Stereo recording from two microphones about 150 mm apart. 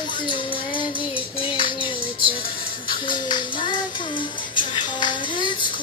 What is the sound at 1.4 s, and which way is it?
Music, 35° left (ahead or behind).